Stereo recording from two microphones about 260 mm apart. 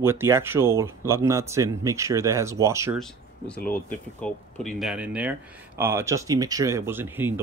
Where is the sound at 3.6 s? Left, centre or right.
Centre.